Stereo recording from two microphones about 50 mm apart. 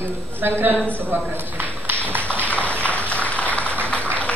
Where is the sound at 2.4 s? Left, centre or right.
Left.